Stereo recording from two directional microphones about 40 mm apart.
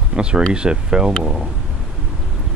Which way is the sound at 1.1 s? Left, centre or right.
Centre.